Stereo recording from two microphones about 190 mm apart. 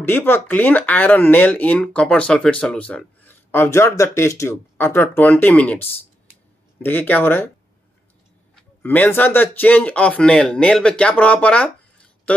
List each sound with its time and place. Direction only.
0.0 s speech: 10° left (ahead or behind)
8.8 s speech: 10° left (ahead or behind)